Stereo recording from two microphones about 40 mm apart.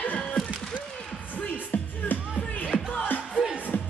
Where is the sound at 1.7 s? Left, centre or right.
Left.